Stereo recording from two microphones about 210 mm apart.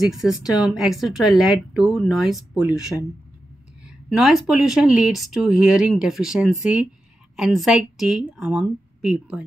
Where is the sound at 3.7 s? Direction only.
5° right (ahead or behind).